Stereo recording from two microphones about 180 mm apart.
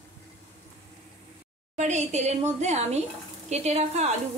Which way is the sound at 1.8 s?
40° right (ahead or behind).